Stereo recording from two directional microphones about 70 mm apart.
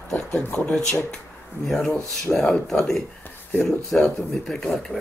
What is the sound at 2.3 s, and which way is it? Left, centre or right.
Speech, centre.